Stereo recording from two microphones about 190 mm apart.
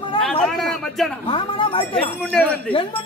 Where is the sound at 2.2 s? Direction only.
5° left (ahead or behind).